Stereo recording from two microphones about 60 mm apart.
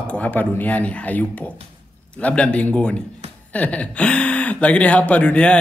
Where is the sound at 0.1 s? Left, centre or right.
Left.